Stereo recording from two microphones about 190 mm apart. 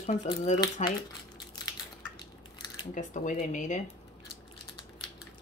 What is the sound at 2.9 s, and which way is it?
Speech, 40° left (ahead or behind).